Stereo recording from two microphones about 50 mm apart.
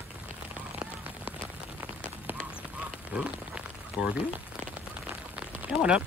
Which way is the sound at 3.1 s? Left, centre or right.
Centre.